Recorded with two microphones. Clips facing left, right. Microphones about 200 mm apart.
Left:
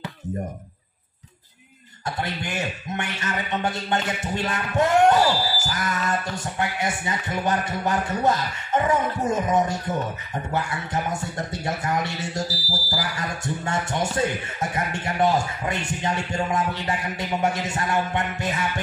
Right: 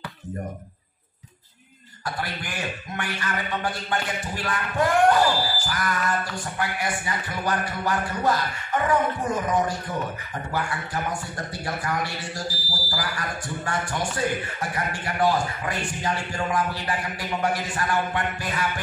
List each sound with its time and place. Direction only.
2.0 s a man's voice: 25° left (ahead or behind)